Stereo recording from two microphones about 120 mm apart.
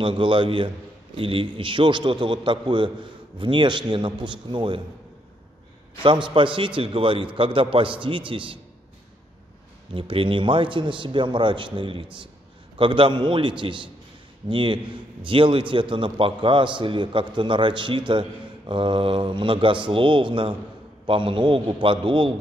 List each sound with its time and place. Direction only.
0.0 s a man's voice: 40° right (ahead or behind)
6.0 s a man's voice: 45° right (ahead or behind)
9.9 s a man's voice: 50° right (ahead or behind)